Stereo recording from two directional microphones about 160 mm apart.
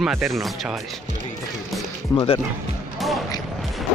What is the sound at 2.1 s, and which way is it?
Speech, 35° left (ahead or behind).